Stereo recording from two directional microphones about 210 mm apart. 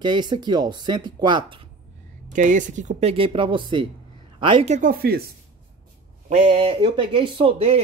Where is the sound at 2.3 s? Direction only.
35° right (ahead or behind).